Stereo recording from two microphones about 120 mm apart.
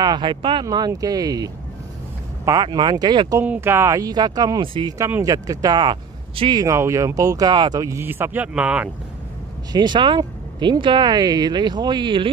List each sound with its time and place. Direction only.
0.0 s speech: 40° right (ahead or behind)
2.6 s speech: 35° right (ahead or behind)
3.3 s speech: 15° right (ahead or behind); by 6.6 s 45° right (ahead or behind)
6.6 s speech: 25° right (ahead or behind)
7.8 s speech: 20° right (ahead or behind)
9.7 s speech: 40° right (ahead or behind)